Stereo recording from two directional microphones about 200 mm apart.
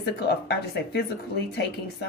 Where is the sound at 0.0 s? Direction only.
55° left (ahead or behind).